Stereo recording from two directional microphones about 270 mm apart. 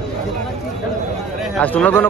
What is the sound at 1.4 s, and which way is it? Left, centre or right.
Speech, centre.